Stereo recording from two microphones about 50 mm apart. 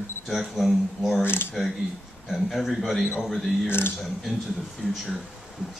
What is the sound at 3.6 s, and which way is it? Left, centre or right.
Speech, left.